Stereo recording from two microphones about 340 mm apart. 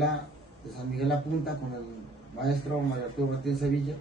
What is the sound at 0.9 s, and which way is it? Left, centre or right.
Speech, centre.